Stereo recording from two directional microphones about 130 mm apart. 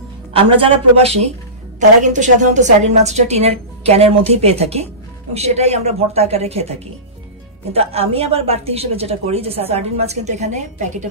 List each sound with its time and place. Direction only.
0.3 s a woman's voice: 45° right (ahead or behind)
1.8 s a woman's voice: 70° right (ahead or behind); by 6.7 s 50° right (ahead or behind)
7.7 s a woman's voice: 50° right (ahead or behind); by 11.1 s 65° right (ahead or behind)